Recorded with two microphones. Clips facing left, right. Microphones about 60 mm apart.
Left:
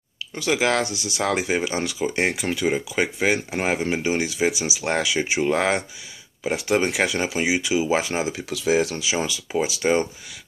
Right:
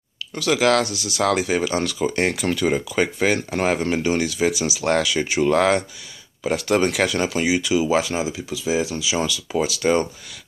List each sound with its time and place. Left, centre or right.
0.3 s speech: left
8.5 s speech: left
8.7 s speech: left
9.2 s speech: left